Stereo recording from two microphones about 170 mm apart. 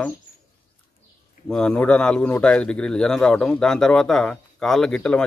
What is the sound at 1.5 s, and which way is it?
A man's voice, 5° left (ahead or behind).